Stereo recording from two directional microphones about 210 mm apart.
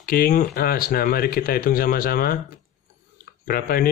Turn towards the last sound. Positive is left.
turn(degrees=45)  # may be behind; listen again after turning